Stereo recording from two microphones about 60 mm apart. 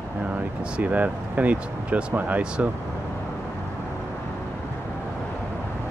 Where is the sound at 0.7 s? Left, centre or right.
Right.